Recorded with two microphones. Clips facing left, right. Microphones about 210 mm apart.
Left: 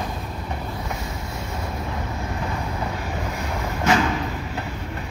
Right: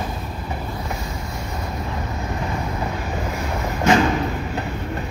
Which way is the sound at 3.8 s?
30° right (ahead or behind).